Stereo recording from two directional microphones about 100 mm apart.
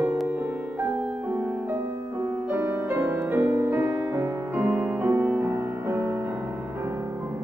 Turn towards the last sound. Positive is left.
turn(degrees=-30)  # may be behind; listen again after turning